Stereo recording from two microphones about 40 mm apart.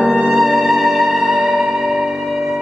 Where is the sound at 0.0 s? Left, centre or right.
Centre.